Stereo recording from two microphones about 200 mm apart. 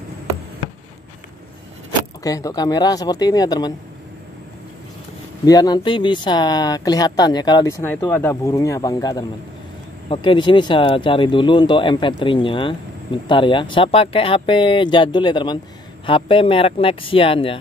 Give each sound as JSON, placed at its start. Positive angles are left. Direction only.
{"t": 2.2, "sound": "speech", "side_deg": 15}
{"t": 5.4, "sound": "speech", "side_deg": 20}